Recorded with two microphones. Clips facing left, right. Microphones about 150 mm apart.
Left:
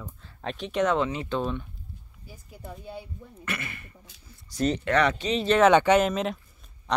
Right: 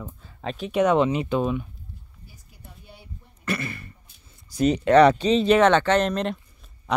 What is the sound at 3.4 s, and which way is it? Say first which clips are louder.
Speech: right 7 dB; 35° right (ahead or behind).